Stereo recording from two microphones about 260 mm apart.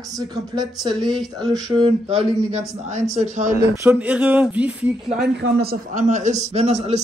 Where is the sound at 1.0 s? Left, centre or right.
Centre.